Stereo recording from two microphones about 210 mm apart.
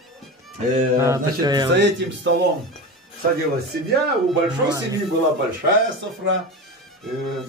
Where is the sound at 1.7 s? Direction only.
55° right (ahead or behind).